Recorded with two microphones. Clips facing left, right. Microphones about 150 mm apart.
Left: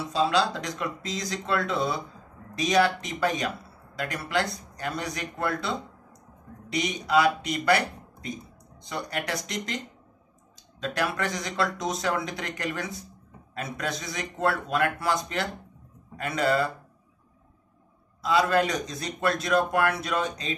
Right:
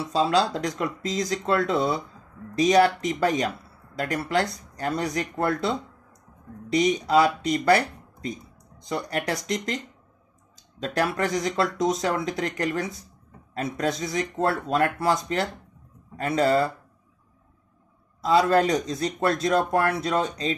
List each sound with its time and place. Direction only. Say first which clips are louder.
0.1 s speech: right 2 dB; 35° right (ahead or behind)
6.7 s speech: right 4 dB; 35° right (ahead or behind)
10.8 s speech: right 3 dB; 35° right (ahead or behind)
18.2 s speech: right 3 dB; 35° right (ahead or behind)